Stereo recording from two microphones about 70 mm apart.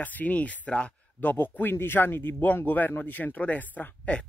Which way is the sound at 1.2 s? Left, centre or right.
Left.